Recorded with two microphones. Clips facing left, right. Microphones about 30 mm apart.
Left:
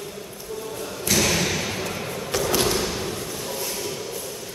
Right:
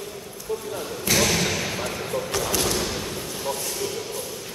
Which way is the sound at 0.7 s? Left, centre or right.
Centre.